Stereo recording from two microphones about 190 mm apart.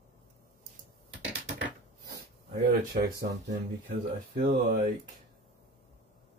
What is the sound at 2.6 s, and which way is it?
Speech, 55° right (ahead or behind).